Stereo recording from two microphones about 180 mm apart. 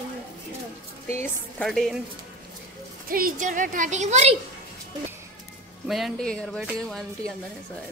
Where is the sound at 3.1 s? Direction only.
50° right (ahead or behind).